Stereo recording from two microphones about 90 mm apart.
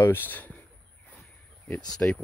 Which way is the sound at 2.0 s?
20° left (ahead or behind).